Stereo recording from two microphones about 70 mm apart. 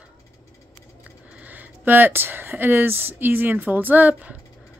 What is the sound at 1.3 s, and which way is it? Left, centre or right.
Speech, right.